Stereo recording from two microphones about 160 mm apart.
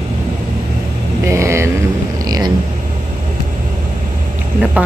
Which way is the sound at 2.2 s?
25° right (ahead or behind).